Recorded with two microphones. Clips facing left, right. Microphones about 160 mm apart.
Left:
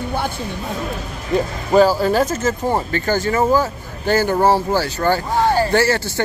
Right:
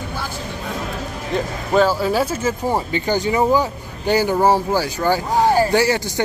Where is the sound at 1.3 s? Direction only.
5° left (ahead or behind).